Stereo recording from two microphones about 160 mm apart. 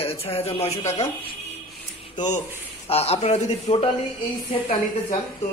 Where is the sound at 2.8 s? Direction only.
40° left (ahead or behind).